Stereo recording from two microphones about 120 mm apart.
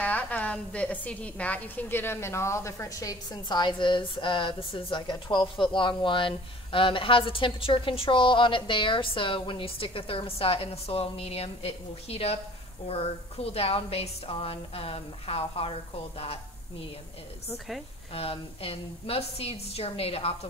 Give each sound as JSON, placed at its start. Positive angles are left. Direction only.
{"t": 0.0, "sound": "a woman's voice", "side_deg": 15}
{"t": 18.1, "sound": "a woman's voice", "side_deg": 55}